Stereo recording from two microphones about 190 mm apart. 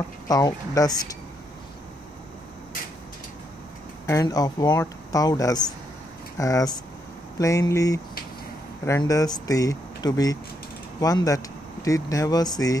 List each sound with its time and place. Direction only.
0.3 s speech: 20° left (ahead or behind)
4.0 s speech: 20° left (ahead or behind)